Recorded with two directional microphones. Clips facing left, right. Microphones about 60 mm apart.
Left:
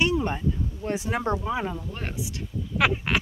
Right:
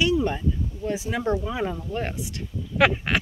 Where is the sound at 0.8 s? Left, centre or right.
Left.